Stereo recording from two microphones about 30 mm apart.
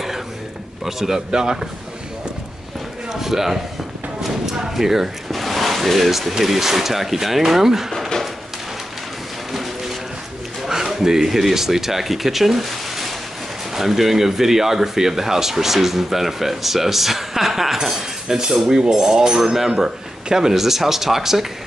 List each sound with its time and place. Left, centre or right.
0.8 s speech: centre
3.1 s speech: centre
4.7 s speech: centre
5.3 s speech: centre
10.7 s speech: centre